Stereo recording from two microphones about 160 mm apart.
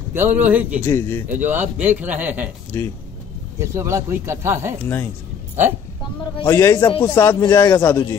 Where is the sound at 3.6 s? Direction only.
15° right (ahead or behind).